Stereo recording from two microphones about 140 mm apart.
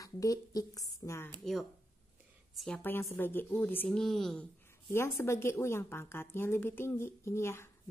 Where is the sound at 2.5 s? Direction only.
5° left (ahead or behind).